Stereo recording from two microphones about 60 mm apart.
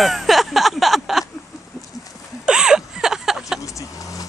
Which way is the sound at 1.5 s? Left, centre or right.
Left.